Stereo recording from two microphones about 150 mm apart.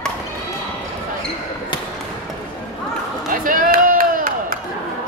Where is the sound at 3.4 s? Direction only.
65° right (ahead or behind).